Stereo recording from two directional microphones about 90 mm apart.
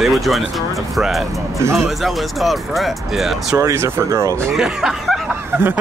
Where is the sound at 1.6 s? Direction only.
30° right (ahead or behind).